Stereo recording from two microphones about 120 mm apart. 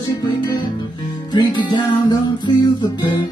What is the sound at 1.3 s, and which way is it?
Music, 40° left (ahead or behind).